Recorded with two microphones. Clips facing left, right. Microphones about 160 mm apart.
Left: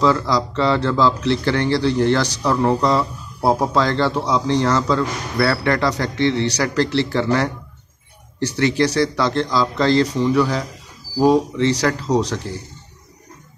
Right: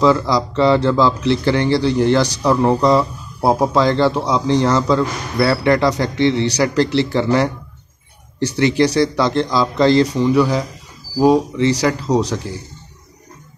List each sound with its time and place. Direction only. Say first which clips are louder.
0.0 s speech: right 3 dB; 15° right (ahead or behind)